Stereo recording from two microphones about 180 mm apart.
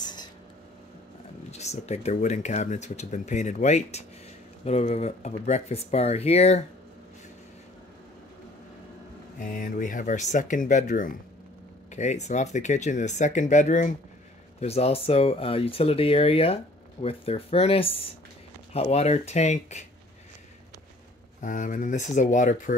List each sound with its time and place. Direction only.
0.0 s a sound: 25° left (ahead or behind)
1.5 s speech: 35° left (ahead or behind)
9.4 s speech: 45° left (ahead or behind)
21.4 s speech: 45° left (ahead or behind)